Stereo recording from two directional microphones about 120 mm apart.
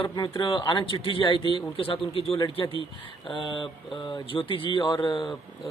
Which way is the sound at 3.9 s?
40° left (ahead or behind).